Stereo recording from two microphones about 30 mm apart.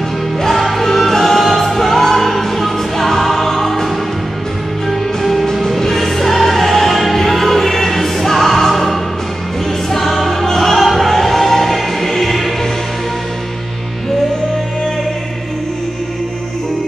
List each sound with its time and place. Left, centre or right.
0.4 s music: centre
5.2 s music: centre
9.8 s choir: centre
10.5 s music: centre